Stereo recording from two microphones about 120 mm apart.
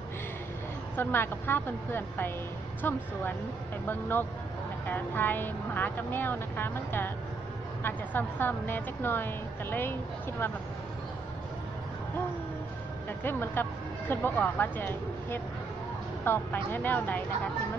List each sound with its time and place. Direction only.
0.9 s speech: 20° left (ahead or behind)
13.2 s speech: 20° left (ahead or behind)